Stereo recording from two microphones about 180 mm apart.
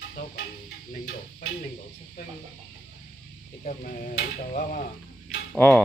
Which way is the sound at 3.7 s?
45° left (ahead or behind).